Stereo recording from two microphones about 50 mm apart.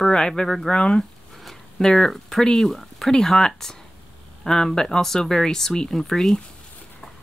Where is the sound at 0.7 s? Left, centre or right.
Centre.